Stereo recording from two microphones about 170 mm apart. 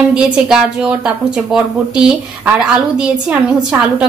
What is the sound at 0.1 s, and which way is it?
A woman's voice, 5° right (ahead or behind).